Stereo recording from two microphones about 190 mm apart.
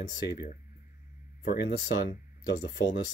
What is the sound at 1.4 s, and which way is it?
Speech, 55° left (ahead or behind).